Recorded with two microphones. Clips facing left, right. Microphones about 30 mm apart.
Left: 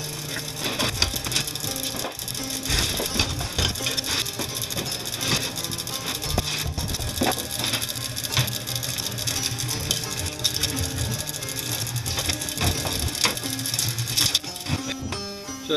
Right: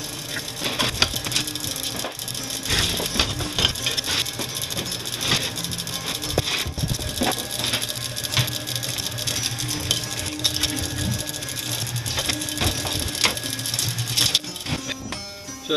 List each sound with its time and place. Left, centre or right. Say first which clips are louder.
0.7 s crushing: right 3 dB; centre
2.7 s wood: right 3 dB; centre
4.4 s sewing machine: right 1 dB; centre
7.2 s a sound: even; centre
10.4 s music: right 2 dB; centre
12.2 s crushing: right 2 dB; centre
14.1 s sewing machine: right 2 dB; centre